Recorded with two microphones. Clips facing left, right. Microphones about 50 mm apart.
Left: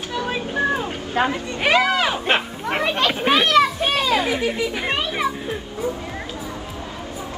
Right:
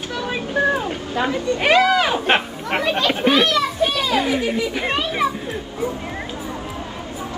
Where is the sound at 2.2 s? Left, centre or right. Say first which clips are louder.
Right 2 dB; right.